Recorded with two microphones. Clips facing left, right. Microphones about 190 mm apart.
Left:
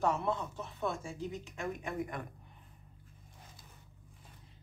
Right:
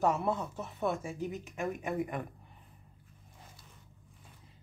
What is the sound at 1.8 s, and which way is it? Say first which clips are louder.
Speech: right 4 dB; 10° right (ahead or behind).